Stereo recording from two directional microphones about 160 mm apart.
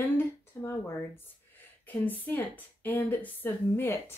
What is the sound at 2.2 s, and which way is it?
A woman's voice, 10° left (ahead or behind).